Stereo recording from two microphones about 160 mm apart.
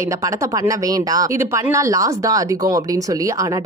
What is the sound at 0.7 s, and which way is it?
Speech, 20° right (ahead or behind).